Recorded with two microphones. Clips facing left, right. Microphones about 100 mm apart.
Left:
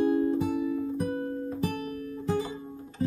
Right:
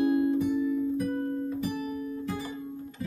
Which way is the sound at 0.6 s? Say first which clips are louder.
Right 2 dB; 85° left.